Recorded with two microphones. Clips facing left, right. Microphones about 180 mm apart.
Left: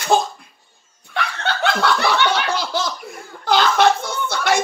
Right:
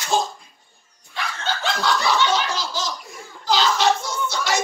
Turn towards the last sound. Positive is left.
turn(degrees=55)  # may be behind; listen again after turning